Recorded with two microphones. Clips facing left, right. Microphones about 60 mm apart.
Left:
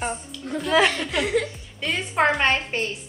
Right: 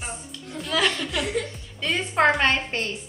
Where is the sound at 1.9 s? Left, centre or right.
Centre.